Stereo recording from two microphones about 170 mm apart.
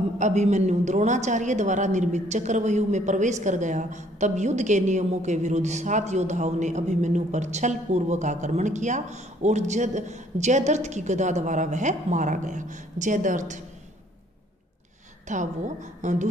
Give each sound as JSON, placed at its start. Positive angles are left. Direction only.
{"t": 0.2, "sound": "a woman's voice", "side_deg": -45}
{"t": 15.2, "sound": "a woman's voice", "side_deg": -45}